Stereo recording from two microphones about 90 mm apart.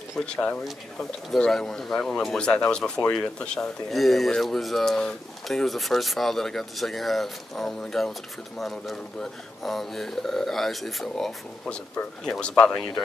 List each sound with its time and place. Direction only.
0.3 s speech: 10° left (ahead or behind)